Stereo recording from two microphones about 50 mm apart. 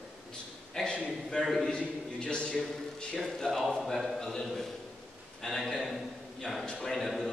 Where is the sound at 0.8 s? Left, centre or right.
Left.